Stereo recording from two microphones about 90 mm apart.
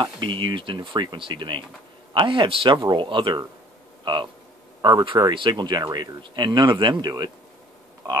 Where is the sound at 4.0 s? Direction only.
55° right (ahead or behind).